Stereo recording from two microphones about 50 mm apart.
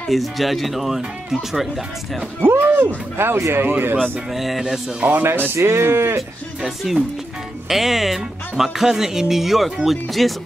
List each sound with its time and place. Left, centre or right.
0.1 s speech: centre
2.6 s a sound: right
3.2 s speech: right
4.0 s speech: centre
5.0 s speech: right
5.5 s speech: right
6.6 s speech: centre